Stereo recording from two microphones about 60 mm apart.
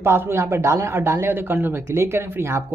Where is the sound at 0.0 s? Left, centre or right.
Right.